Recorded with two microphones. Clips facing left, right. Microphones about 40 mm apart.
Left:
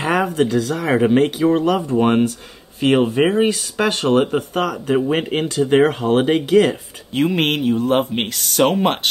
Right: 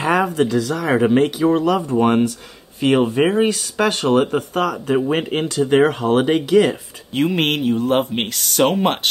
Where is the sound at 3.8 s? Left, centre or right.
Left.